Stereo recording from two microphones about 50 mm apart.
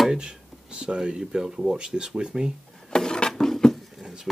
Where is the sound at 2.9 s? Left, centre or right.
Centre.